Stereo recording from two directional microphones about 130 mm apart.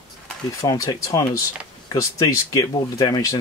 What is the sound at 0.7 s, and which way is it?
Speech, 30° left (ahead or behind).